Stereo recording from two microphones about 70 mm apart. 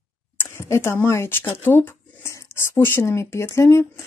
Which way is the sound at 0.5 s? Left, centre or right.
Left.